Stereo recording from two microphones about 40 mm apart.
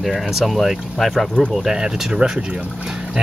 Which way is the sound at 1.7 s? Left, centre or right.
Centre.